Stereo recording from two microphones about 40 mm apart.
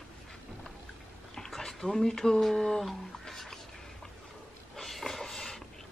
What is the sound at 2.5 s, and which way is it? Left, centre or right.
Speech, centre.